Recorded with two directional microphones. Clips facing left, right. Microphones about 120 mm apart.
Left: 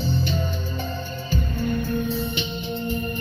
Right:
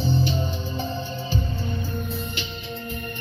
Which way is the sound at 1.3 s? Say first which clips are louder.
Left 6 dB; 55° left (ahead or behind).